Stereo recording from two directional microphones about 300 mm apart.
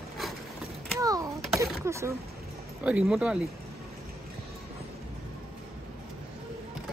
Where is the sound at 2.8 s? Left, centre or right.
Centre.